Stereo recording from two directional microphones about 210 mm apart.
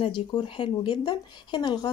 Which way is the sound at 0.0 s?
20° left (ahead or behind).